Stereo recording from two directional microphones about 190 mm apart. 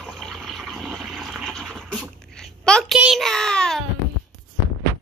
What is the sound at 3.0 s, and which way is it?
Child singing, centre (ahead or behind).